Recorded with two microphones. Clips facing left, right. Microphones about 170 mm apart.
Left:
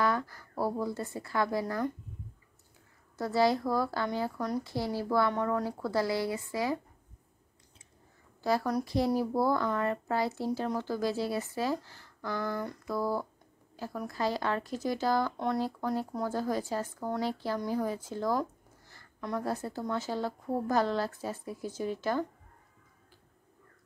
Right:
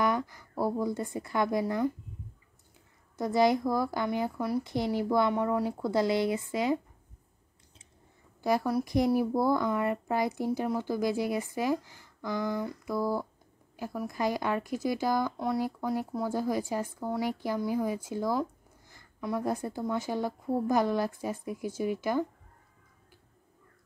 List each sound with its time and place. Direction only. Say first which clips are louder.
0.0 s speech: right 1 dB; 15° right (ahead or behind)
3.2 s speech: right 2 dB; 15° right (ahead or behind)
4.6 s speech: right 3 dB; 20° right (ahead or behind)
8.4 s a woman's voice: right 2 dB; 15° right (ahead or behind)
12.5 s a sound: right 2 dB; centre (ahead or behind)
12.9 s speech: right 1 dB; 10° right (ahead or behind)
15.3 s a sound: right 1 dB; 5° right (ahead or behind)
15.6 s speech: right 1 dB; 15° right (ahead or behind)